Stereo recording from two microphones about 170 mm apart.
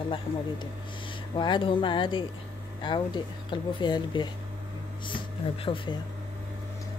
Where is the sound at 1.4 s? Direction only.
30° left (ahead or behind).